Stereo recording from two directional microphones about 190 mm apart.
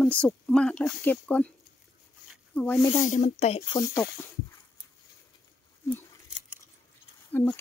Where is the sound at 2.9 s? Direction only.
35° left (ahead or behind).